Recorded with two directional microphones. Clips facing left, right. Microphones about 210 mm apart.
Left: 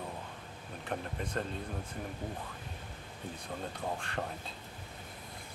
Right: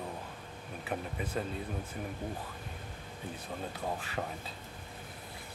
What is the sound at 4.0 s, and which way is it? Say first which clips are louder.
Speech: even; 5° right (ahead or behind).